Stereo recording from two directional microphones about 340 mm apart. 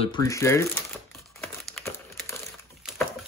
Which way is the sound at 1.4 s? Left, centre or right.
Centre.